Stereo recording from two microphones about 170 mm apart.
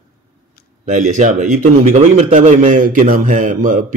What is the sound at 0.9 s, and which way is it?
A man's voice, 45° right (ahead or behind).